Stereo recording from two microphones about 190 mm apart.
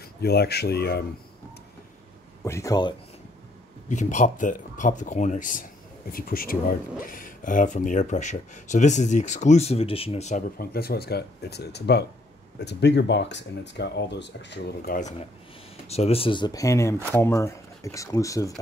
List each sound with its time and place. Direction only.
0.2 s speech: 55° left (ahead or behind)
2.4 s speech: 15° left (ahead or behind)
3.9 s speech: 40° left (ahead or behind)
15.9 s speech: 35° left (ahead or behind); by 18.5 s 15° left (ahead or behind)